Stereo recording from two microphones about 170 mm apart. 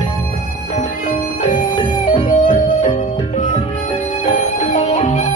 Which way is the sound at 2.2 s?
50° left (ahead or behind).